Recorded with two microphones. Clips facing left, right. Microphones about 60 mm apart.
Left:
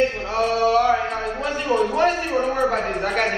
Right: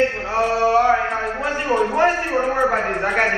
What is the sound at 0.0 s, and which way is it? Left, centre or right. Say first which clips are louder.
Mantra: right 2 dB; right.